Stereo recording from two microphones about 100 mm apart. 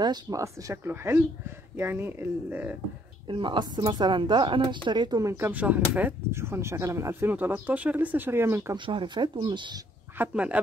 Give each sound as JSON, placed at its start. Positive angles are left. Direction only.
{"t": 0.0, "sound": "speech", "side_deg": -45}
{"t": 0.4, "sound": "speech", "side_deg": -35}
{"t": 3.3, "sound": "speech", "side_deg": -55}
{"t": 5.5, "sound": "speech", "side_deg": -15}
{"t": 8.7, "sound": "speech", "side_deg": -55}
{"t": 10.1, "sound": "speech", "side_deg": -15}